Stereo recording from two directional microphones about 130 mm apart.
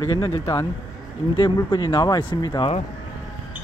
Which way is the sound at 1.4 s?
35° left (ahead or behind).